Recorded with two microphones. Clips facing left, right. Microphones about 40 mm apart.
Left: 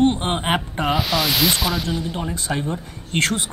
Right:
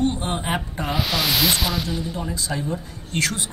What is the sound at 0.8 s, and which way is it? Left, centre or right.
Speech, centre.